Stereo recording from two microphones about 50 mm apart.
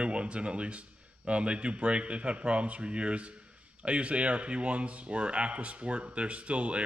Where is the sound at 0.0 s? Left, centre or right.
Right.